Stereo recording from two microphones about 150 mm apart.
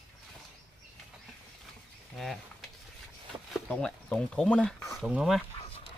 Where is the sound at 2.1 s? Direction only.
Centre (ahead or behind).